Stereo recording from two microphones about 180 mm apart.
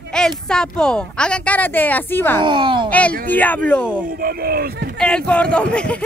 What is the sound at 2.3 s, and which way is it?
Speech, 25° right (ahead or behind).